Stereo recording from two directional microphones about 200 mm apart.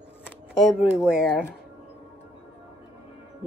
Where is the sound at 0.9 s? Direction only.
5° right (ahead or behind).